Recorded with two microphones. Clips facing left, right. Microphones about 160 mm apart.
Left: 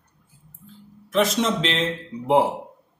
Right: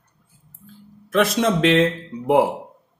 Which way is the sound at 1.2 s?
60° right (ahead or behind).